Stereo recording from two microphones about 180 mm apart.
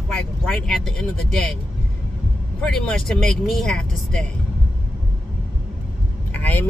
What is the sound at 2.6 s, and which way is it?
Speech, 5° left (ahead or behind).